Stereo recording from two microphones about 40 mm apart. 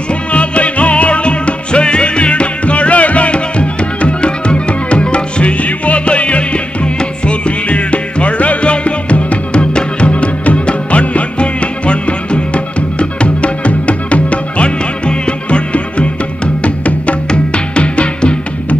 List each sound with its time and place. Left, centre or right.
0.3 s music: left